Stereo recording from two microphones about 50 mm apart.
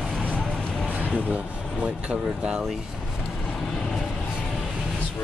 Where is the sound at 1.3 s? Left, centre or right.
Right.